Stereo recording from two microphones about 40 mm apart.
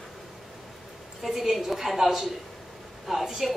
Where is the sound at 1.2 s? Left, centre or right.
Centre.